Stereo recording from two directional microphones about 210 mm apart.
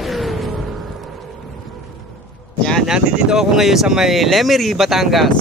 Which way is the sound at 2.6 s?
Centre (ahead or behind).